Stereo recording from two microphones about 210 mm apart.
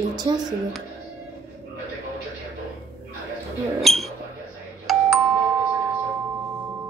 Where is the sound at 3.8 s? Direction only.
Centre (ahead or behind).